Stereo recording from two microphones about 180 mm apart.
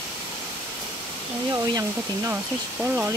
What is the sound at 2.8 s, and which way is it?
Speech, 10° right (ahead or behind).